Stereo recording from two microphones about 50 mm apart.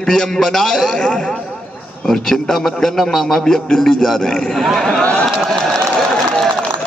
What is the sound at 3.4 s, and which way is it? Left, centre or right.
A man's voice, centre.